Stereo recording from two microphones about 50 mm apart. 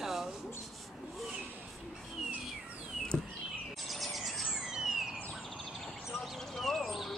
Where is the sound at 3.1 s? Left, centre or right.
Centre.